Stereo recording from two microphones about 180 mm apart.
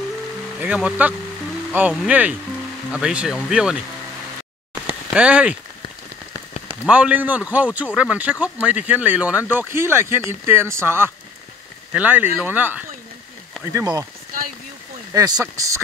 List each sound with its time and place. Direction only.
0.6 s a man's voice: 5° right (ahead or behind)
5.1 s speech: 5° right (ahead or behind)
6.7 s a man's voice: 10° right (ahead or behind)
15.1 s speech: 20° right (ahead or behind)